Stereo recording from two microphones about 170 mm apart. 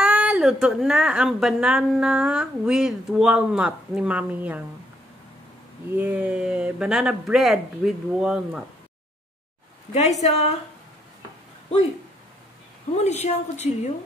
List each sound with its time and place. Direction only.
0.0 s speech: 5° right (ahead or behind)
5.9 s speech: 10° right (ahead or behind)
10.2 s a woman's voice: 40° left (ahead or behind)
12.9 s a woman's voice: 40° left (ahead or behind)